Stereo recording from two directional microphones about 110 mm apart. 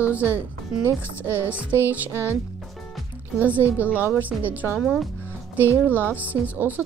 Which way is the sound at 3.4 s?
15° right (ahead or behind).